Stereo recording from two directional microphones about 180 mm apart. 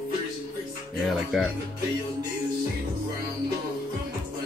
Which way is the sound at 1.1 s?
Centre (ahead or behind).